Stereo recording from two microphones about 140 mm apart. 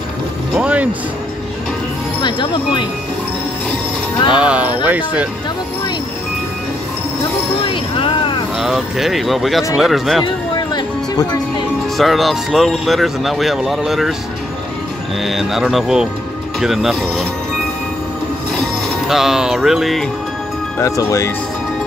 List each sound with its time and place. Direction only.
0.6 s music: 10° right (ahead or behind)
2.2 s speech: 35° left (ahead or behind)
4.3 s speech: 5° right (ahead or behind)
7.7 s a sound: 40° left (ahead or behind)
8.5 s speech: 5° right (ahead or behind)
10.2 s music: 30° left (ahead or behind)
12.0 s speech: centre (ahead or behind)
15.2 s speech: centre (ahead or behind)
18.5 s music: centre (ahead or behind)
20.8 s speech: 20° left (ahead or behind)